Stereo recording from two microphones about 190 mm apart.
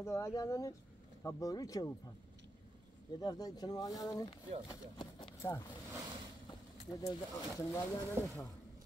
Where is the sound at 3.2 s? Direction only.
20° left (ahead or behind).